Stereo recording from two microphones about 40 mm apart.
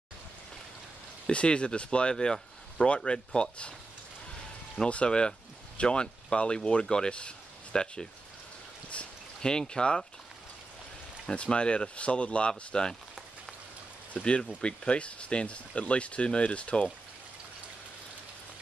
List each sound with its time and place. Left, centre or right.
1.2 s speech: left
4.8 s speech: left
9.4 s speech: centre
11.3 s speech: left
14.1 s speech: left